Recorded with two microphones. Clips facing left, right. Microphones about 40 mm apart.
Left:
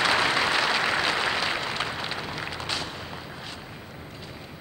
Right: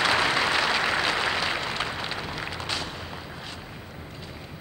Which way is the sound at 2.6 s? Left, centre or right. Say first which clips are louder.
Even; left.